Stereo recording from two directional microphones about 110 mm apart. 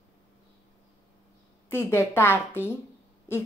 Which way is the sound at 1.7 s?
20° left (ahead or behind).